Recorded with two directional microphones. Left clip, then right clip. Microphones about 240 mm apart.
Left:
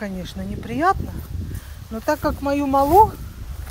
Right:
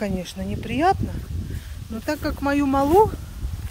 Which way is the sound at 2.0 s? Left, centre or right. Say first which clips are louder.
Left 5 dB; centre.